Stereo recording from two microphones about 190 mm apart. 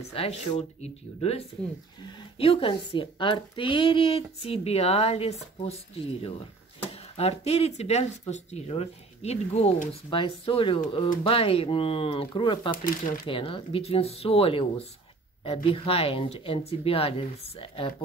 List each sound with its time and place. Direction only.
0.1 s speech: 30° left (ahead or behind)
2.0 s speech: 25° left (ahead or behind)
12.7 s speech: 45° left (ahead or behind)
13.3 s speech: 30° left (ahead or behind)